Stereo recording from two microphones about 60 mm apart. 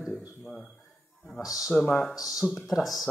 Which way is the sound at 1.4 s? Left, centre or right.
Left.